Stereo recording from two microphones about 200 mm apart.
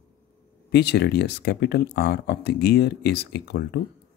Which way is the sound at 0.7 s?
55° left (ahead or behind).